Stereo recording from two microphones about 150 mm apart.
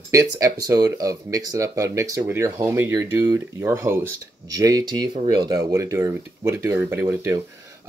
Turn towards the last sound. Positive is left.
turn(degrees=-20)  # may be behind; listen again after turning